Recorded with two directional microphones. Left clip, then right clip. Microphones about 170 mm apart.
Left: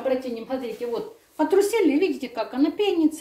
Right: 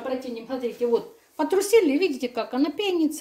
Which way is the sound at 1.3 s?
60° right (ahead or behind).